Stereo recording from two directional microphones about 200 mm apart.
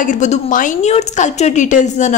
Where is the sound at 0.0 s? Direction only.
40° left (ahead or behind).